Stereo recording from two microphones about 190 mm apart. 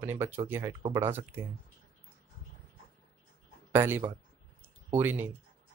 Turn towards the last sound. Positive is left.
turn(degrees=-10)  # may be behind; listen again after turning